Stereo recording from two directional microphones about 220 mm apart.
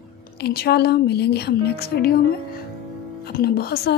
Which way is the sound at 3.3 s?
45° left (ahead or behind).